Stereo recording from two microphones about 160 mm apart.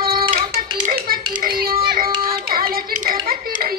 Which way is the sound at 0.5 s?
65° right (ahead or behind).